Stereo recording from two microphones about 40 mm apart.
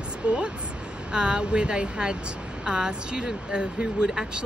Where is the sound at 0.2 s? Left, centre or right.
Right.